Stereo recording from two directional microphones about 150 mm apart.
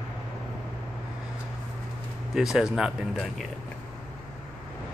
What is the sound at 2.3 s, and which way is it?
Speech, 5° right (ahead or behind).